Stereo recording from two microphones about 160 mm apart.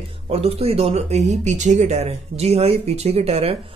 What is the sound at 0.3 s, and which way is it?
Speech, 40° right (ahead or behind).